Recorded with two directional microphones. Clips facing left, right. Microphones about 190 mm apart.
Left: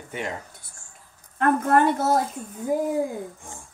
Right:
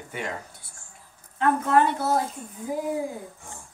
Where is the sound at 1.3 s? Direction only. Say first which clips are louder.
Left 1 dB; 50° left (ahead or behind).